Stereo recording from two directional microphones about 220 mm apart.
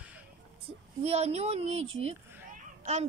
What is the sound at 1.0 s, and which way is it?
A woman's voice, 30° right (ahead or behind).